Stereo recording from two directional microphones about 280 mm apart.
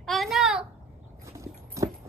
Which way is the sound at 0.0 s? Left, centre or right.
Centre.